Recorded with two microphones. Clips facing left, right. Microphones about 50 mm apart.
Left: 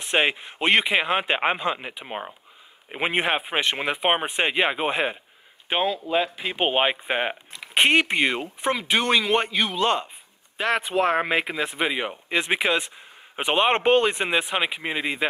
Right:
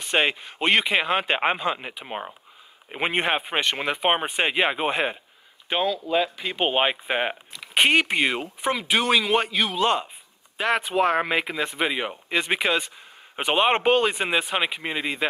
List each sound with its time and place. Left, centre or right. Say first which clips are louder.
0.0 s speech: even; centre
5.7 s speech: even; centre
6.6 s speech: even; centre